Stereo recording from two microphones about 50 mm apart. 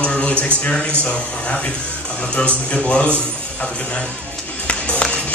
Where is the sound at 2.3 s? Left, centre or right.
Left.